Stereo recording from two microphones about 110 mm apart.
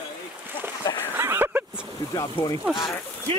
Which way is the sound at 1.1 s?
20° right (ahead or behind).